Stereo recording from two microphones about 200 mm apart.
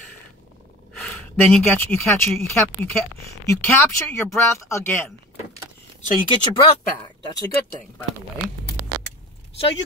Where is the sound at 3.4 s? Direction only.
15° left (ahead or behind).